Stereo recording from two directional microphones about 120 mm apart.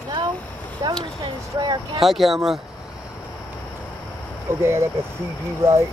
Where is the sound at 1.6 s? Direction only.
35° right (ahead or behind).